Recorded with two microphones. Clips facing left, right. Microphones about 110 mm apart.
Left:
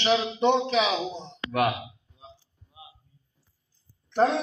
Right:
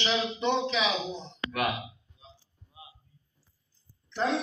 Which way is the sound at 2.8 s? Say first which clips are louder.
Left 2 dB; 5° left (ahead or behind).